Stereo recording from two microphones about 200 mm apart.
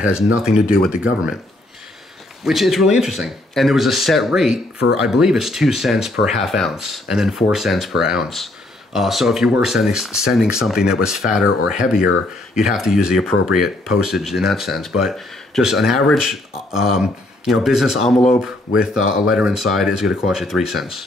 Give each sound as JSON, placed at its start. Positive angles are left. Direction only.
{"t": 0.4, "sound": "speech", "side_deg": -5}
{"t": 2.4, "sound": "speech", "side_deg": 0}
{"t": 11.4, "sound": "speech", "side_deg": 45}
{"t": 12.5, "sound": "speech", "side_deg": 0}